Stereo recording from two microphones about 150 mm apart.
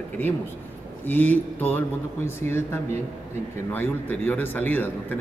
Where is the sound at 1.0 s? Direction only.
10° left (ahead or behind).